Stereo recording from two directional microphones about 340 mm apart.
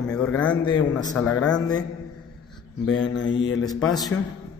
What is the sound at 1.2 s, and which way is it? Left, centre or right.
Mantra, left.